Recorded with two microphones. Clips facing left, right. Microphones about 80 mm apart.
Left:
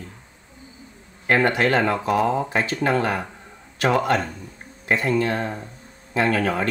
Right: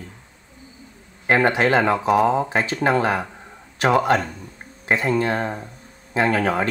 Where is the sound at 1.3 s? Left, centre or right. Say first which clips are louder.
Right 2 dB; centre.